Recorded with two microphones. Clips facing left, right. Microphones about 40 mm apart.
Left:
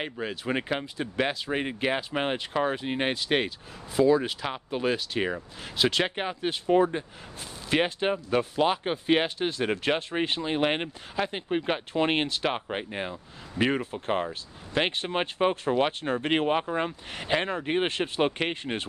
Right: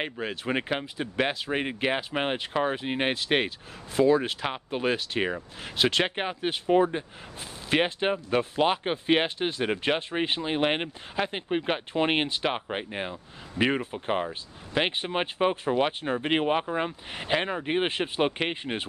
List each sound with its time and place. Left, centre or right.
0.0 s speech: right
0.5 s speech: centre
7.3 s speech: right
10.5 s speech: centre